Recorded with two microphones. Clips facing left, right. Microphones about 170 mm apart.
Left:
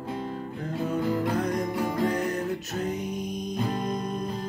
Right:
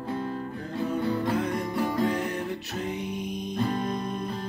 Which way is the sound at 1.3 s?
40° left (ahead or behind).